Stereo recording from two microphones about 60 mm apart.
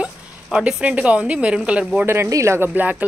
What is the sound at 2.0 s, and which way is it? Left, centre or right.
Speech, right.